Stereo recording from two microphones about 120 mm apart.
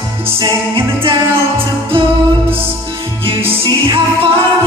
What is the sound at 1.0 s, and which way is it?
Music, 50° right (ahead or behind).